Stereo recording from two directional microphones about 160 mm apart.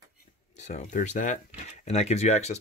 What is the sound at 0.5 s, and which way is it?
Speech, 45° left (ahead or behind).